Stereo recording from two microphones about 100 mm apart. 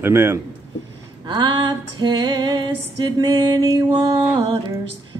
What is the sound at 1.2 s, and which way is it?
Female singing, 50° right (ahead or behind).